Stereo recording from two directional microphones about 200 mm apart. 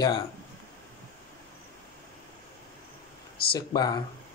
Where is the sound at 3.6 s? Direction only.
20° left (ahead or behind).